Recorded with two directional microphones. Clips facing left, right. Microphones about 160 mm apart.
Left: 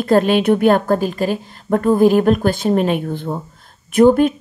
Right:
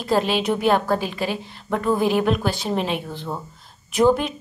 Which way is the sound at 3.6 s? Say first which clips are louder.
Left 6 dB; 55° left (ahead or behind).